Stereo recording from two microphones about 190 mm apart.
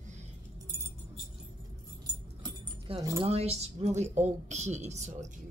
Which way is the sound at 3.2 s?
35° right (ahead or behind).